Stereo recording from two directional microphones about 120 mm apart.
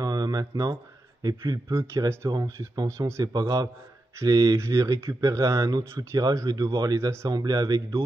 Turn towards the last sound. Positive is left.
turn(degrees=-30)  # may be behind; listen again after turning